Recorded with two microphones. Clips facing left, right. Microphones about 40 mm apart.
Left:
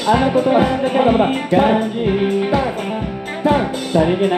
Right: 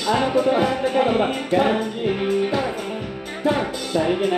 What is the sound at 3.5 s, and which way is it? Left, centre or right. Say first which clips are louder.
Music: left 5 dB; left.